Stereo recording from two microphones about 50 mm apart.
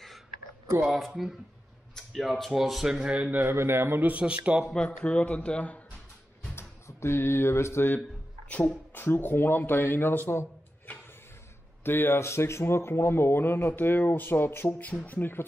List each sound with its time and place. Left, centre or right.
0.9 s speech: centre
2.5 s speech: centre
3.1 s a man's voice: right
3.5 s speech: right
4.0 s speech: right
4.6 s a man's voice: centre
6.5 s speech: left
8.9 s a man's voice: left
11.8 s a man's voice: left